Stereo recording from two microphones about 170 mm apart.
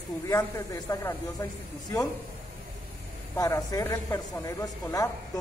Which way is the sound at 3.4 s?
20° left (ahead or behind).